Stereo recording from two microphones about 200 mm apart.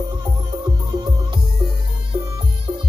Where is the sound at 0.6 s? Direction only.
20° right (ahead or behind).